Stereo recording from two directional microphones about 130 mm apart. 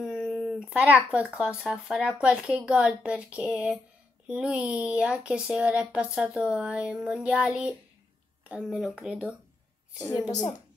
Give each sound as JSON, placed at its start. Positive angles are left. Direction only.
{"t": 0.0, "sound": "a sound", "side_deg": -5}
{"t": 1.2, "sound": "speech", "side_deg": -5}
{"t": 10.1, "sound": "speech", "side_deg": 30}